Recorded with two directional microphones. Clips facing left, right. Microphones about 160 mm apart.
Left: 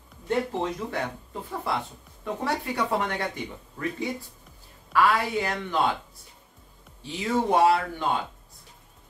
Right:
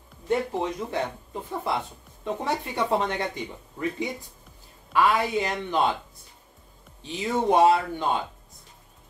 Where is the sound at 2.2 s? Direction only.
20° right (ahead or behind).